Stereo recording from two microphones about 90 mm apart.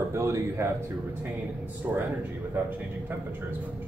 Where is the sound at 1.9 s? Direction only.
25° right (ahead or behind).